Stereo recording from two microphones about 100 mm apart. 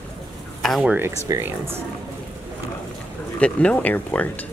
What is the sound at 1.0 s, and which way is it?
Speech, 35° right (ahead or behind).